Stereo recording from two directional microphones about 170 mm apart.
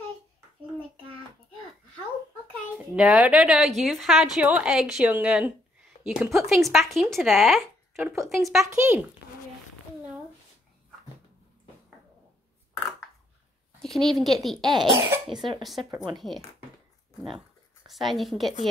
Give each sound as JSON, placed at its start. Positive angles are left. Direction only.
{"t": 3.0, "sound": "a woman's voice", "side_deg": -5}
{"t": 5.9, "sound": "a sound", "side_deg": 40}
{"t": 6.3, "sound": "a woman's voice", "side_deg": 0}
{"t": 8.6, "sound": "a child's voice", "side_deg": -15}
{"t": 13.7, "sound": "a woman's voice", "side_deg": 0}
{"t": 14.6, "sound": "speech", "side_deg": -25}
{"t": 16.2, "sound": "a woman's voice", "side_deg": 0}
{"t": 17.8, "sound": "a woman's voice", "side_deg": 0}